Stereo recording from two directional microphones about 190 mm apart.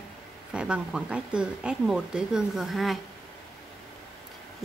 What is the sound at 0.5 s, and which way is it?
Speech, 5° right (ahead or behind).